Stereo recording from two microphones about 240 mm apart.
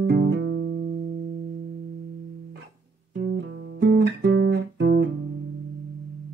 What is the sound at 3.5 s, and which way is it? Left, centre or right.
Music, right.